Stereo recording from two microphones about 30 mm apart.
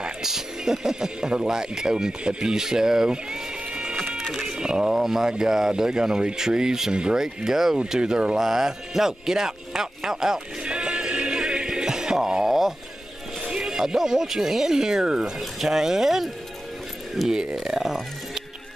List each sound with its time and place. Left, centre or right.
0.2 s speech: centre
3.1 s a sound: right
4.2 s a sound: centre
4.5 s speech: right
4.9 s speech: centre
8.0 s speech: right
8.4 s speech: centre
10.6 s music: right
12.4 s a sound: centre
13.6 s speech: centre
17.2 s speech: centre
17.6 s speech: centre